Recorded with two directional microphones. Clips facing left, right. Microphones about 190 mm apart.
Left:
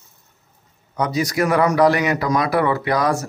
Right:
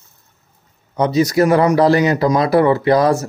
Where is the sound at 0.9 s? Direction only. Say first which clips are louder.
Right 6 dB; 25° right (ahead or behind).